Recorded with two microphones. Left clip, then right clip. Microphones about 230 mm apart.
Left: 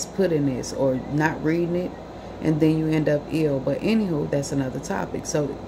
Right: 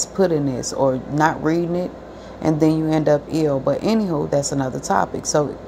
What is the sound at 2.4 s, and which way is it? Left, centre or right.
Speech, centre.